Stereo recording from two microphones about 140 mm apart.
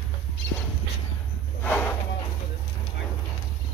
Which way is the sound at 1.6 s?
15° left (ahead or behind).